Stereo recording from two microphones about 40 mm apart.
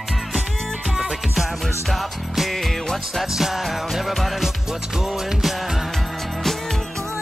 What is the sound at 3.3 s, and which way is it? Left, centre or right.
Music, centre.